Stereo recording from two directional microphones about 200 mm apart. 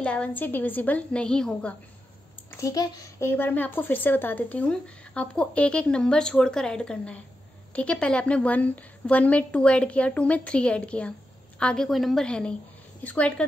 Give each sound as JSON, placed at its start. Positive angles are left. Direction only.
{"t": 0.0, "sound": "a woman's voice", "side_deg": 5}
{"t": 2.6, "sound": "a woman's voice", "side_deg": 15}